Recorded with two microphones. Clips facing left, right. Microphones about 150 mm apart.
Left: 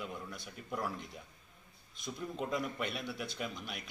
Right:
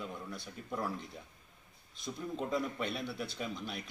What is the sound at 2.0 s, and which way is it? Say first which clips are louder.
Speech: right 1 dB; 5° left (ahead or behind).